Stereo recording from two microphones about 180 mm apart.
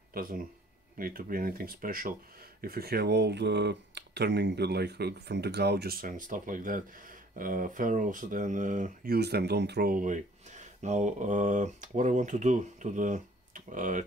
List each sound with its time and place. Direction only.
0.1 s speech: 55° right (ahead or behind)